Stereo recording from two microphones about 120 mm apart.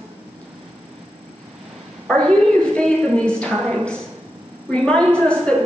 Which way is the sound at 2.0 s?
5° left (ahead or behind).